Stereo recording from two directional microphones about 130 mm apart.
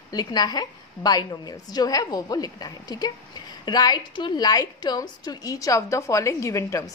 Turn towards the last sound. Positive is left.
turn(degrees=25)  # may be behind; listen again after turning